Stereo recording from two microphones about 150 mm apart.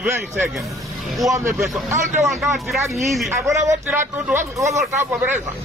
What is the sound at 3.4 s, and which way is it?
Speech, 20° right (ahead or behind).